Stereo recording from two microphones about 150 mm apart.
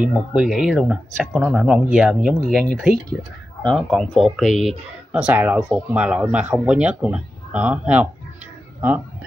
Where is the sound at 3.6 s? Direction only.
5° left (ahead or behind).